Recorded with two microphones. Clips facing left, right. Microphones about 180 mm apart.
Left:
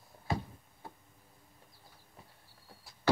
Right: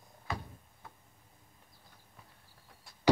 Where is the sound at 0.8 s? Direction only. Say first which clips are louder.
Left 5 dB; 30° left (ahead or behind).